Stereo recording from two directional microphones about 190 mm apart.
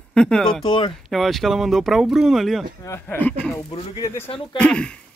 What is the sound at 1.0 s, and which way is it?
Speech, centre (ahead or behind).